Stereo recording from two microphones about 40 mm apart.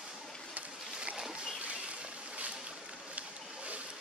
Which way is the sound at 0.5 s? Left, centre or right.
Right.